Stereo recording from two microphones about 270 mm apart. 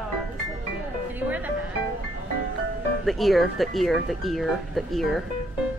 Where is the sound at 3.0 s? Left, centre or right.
Centre.